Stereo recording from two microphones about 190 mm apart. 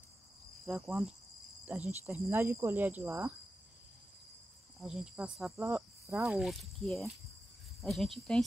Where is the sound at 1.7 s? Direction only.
10° right (ahead or behind).